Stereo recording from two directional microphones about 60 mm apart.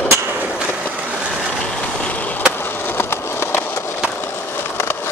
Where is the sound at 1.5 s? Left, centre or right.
Centre.